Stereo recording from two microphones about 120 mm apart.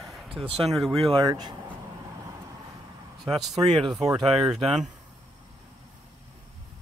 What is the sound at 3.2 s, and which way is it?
Speech, centre (ahead or behind).